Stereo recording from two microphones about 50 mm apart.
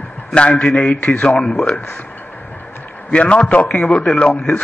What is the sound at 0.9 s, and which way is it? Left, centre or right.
Speech, left.